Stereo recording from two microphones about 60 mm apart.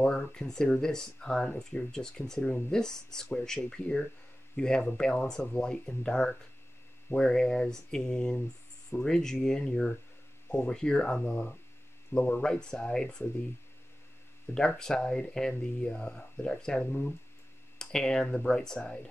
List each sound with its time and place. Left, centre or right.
0.0 s speech: centre
2.4 s speech: left
2.8 s speech: centre
12.4 s speech: centre
14.8 s speech: centre
16.8 s speech: left
17.7 s speech: centre